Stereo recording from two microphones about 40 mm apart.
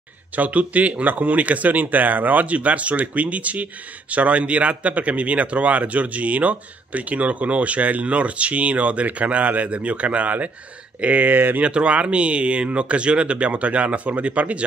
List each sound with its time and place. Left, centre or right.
0.4 s a man's voice: right
11.3 s speech: right
11.6 s a man's voice: right